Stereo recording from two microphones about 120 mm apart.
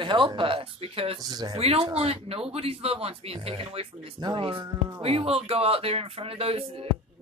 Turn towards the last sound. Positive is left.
turn(degrees=-55)  # may be behind; listen again after turning